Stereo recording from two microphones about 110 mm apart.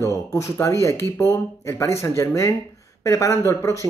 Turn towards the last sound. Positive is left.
turn(degrees=30)  # may be behind; listen again after turning